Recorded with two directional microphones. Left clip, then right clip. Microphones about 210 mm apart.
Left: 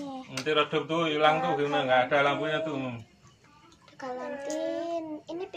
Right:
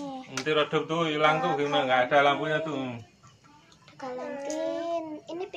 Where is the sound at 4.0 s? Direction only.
10° left (ahead or behind).